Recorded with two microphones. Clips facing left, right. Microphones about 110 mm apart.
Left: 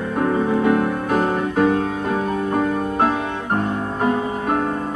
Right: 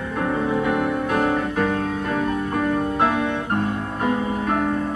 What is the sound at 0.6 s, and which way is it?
Music, 35° left (ahead or behind).